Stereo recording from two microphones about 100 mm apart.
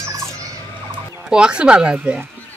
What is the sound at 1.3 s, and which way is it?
Speech, 10° right (ahead or behind).